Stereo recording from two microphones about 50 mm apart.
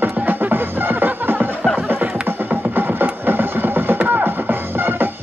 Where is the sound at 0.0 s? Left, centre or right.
Right.